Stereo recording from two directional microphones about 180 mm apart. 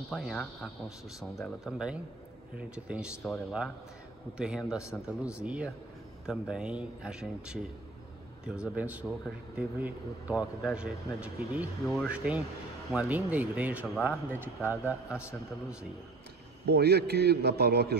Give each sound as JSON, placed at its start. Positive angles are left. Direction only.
{"t": 0.1, "sound": "speech", "side_deg": 0}
{"t": 16.6, "sound": "a man's voice", "side_deg": -65}